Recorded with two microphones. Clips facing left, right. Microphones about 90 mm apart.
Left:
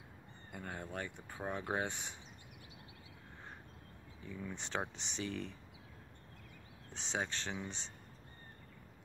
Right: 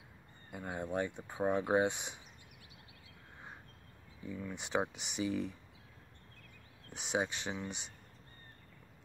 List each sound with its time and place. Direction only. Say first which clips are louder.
0.5 s speech: right 6 dB; 15° right (ahead or behind)
4.4 s speech: right 5 dB; 10° right (ahead or behind)
6.9 s speech: right 4 dB; 15° right (ahead or behind)